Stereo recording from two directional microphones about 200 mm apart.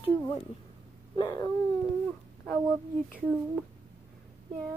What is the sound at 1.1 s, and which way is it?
Dog, 20° left (ahead or behind).